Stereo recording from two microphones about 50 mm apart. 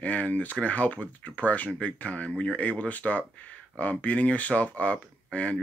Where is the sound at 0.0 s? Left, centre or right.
Left.